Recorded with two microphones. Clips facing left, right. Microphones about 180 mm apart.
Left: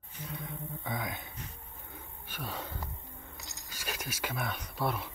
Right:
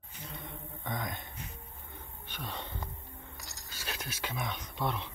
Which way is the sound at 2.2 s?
10° left (ahead or behind).